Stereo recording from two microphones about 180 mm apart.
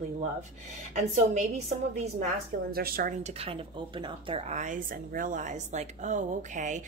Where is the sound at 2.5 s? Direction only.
55° right (ahead or behind).